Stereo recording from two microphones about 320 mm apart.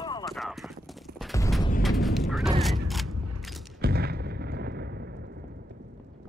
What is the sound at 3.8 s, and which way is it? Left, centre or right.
Artillery fire, right.